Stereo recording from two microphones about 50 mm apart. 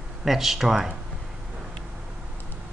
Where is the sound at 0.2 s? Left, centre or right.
Centre.